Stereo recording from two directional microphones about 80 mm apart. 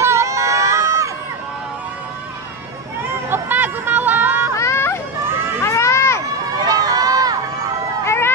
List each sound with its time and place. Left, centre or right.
0.0 s run: right
3.3 s music: right
4.6 s run: left
5.6 s a sound: left
6.6 s run: right
8.0 s run: left